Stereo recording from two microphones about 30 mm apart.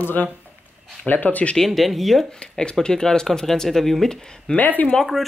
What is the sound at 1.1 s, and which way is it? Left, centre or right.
Speech, left.